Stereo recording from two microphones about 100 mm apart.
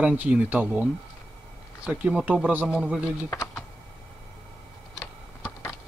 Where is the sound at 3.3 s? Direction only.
30° left (ahead or behind).